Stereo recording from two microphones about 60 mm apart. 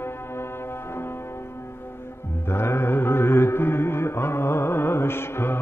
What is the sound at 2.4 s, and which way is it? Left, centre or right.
Music, left.